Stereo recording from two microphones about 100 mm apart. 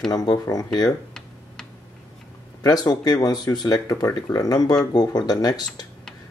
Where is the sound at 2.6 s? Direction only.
40° left (ahead or behind).